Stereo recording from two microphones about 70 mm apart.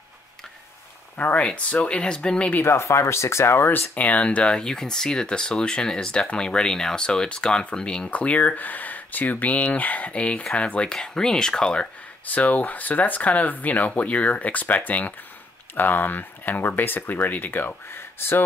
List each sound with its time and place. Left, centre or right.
1.1 s speech: left
2.6 s speech: left